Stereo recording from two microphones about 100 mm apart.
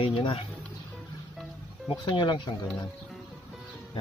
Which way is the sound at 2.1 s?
50° left (ahead or behind).